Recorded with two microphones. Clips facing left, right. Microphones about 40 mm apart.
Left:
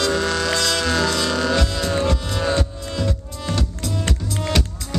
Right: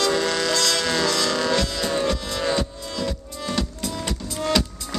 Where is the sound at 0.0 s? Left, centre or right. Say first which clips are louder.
Left 1 dB; centre.